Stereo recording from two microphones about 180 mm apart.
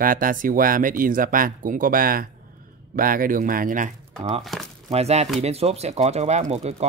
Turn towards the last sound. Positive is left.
turn(degrees=-35)  # may be behind; listen again after turning